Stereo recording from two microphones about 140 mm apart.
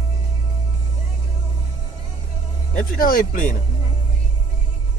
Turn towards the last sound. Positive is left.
turn(degrees=80)